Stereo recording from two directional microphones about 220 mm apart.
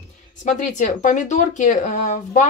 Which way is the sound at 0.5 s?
35° left (ahead or behind).